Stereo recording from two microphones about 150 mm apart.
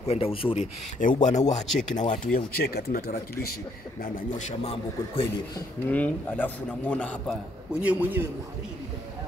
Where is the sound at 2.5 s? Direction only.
90° left.